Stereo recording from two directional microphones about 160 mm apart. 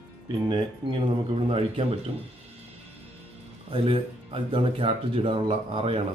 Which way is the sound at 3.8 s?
35° right (ahead or behind).